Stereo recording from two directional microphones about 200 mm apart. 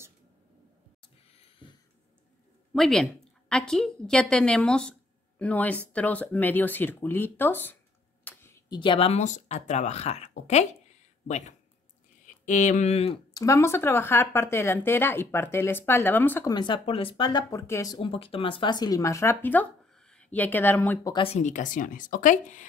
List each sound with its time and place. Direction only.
1.3 s a sound: 25° left (ahead or behind)
2.7 s a woman's voice: centre (ahead or behind); by 13.2 s 30° left (ahead or behind)
13.3 s speech: 15° left (ahead or behind)
17.9 s speech: 25° left (ahead or behind)
21.1 s speech: 30° left (ahead or behind)